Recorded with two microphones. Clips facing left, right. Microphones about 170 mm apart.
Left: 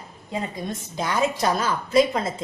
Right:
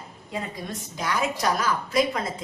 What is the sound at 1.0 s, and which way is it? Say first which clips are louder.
A woman's voice: left 3 dB; 25° left (ahead or behind).